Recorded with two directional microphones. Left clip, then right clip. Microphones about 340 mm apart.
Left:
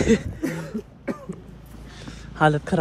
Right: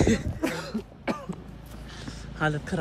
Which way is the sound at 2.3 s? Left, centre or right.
Centre.